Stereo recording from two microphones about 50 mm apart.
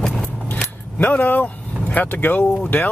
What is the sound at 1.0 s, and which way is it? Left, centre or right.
Speech, left.